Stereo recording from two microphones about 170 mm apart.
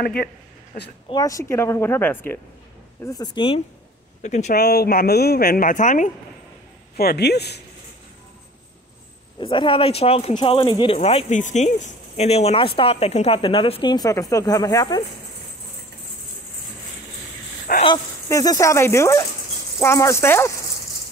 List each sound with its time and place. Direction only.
0.0 s speech: 60° left (ahead or behind)
1.1 s speech: 20° left (ahead or behind)
3.1 s speech: 25° left (ahead or behind)
4.2 s speech: 45° left (ahead or behind)
4.5 s speech: 65° left (ahead or behind); by 6.0 s 50° left (ahead or behind)
7.0 s a man's voice: 70° left (ahead or behind)
9.4 s speech: 30° left (ahead or behind)
17.8 s speech: 25° left (ahead or behind)